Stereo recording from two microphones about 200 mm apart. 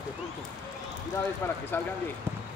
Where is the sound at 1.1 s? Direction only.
10° left (ahead or behind).